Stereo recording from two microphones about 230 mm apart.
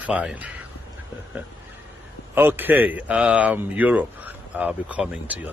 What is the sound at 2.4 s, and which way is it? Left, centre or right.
A man's voice, centre.